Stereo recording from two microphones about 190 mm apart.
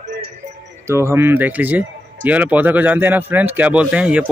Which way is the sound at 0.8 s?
15° right (ahead or behind).